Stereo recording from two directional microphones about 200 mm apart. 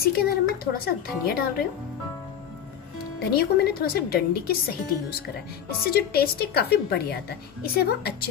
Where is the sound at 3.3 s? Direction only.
50° left (ahead or behind).